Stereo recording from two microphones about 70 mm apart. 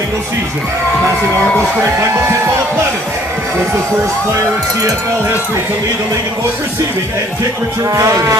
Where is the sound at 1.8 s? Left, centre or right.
Right.